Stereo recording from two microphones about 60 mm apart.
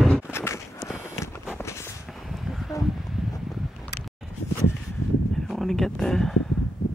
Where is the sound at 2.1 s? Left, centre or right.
Centre.